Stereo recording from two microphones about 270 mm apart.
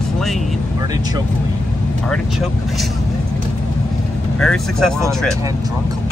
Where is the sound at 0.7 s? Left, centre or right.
Centre.